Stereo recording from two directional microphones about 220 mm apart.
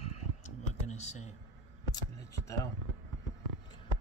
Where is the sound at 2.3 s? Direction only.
15° left (ahead or behind).